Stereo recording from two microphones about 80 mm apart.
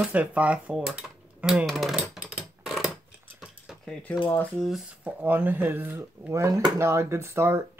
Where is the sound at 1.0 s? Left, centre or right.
Centre.